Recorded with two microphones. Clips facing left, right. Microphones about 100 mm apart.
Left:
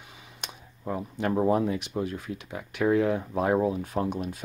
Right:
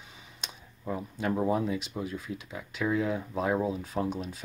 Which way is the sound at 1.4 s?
50° left (ahead or behind).